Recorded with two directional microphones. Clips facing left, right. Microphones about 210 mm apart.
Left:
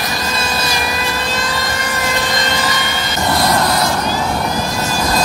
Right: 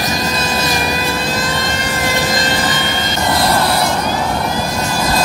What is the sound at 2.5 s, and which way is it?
Vehicle, 20° right (ahead or behind).